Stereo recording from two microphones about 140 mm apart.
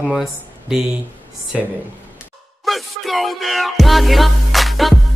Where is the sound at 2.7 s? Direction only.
Centre (ahead or behind).